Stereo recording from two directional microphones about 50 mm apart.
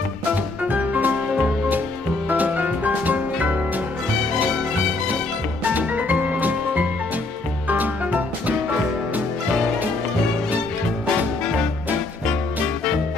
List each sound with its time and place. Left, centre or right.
0.7 s music: right
2.2 s music: right
5.6 s music: right